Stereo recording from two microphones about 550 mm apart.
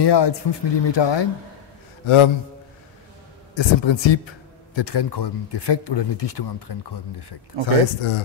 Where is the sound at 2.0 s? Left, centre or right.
Left.